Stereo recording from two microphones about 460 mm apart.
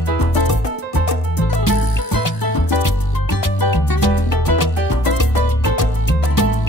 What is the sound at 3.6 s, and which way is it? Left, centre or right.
Music, left.